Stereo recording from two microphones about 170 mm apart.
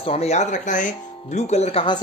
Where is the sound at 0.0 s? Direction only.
35° left (ahead or behind).